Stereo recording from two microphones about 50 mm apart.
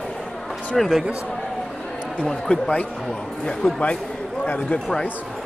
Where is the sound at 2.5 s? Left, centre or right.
Left.